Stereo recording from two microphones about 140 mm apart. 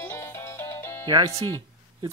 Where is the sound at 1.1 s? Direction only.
25° right (ahead or behind).